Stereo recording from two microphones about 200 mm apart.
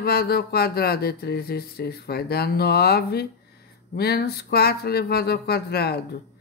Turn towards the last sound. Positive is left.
turn(degrees=55)  # may be behind; listen again after turning